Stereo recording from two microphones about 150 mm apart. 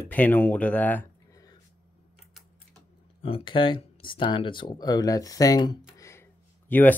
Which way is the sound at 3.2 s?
40° left (ahead or behind).